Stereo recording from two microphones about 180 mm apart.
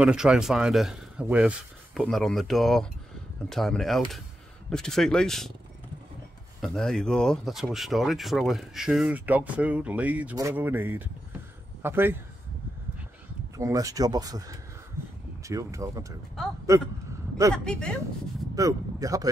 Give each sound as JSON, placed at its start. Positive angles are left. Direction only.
{"t": 0.0, "sound": "speech", "side_deg": -5}
{"t": 6.6, "sound": "speech", "side_deg": 5}
{"t": 13.6, "sound": "speech", "side_deg": -20}
{"t": 16.4, "sound": "speech", "side_deg": 0}
{"t": 17.6, "sound": "speech", "side_deg": 5}
{"t": 18.5, "sound": "speech", "side_deg": -20}